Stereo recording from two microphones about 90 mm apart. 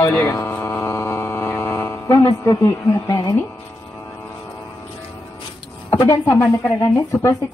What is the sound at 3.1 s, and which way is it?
Speech, 50° left (ahead or behind).